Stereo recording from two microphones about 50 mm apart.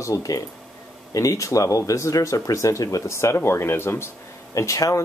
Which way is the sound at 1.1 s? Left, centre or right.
Left.